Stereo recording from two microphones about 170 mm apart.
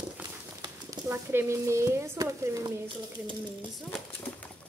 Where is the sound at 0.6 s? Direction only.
15° right (ahead or behind).